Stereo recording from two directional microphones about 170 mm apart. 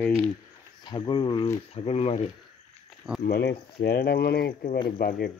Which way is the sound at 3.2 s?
65° left (ahead or behind).